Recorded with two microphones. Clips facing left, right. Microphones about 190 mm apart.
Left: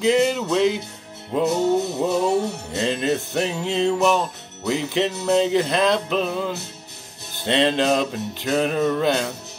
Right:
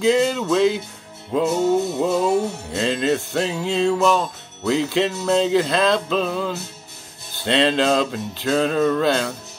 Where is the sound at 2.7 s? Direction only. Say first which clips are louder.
Right 2 dB; 20° left (ahead or behind).